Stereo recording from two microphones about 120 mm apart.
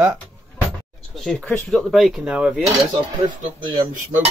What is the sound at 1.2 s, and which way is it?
Speech, centre (ahead or behind).